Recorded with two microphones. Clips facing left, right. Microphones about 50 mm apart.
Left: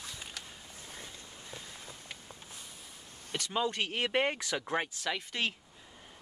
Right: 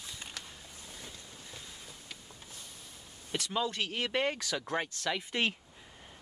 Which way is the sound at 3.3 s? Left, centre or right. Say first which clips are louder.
Left 1 dB; centre.